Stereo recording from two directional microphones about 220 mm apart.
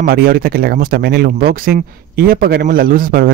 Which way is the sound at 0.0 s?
40° right (ahead or behind).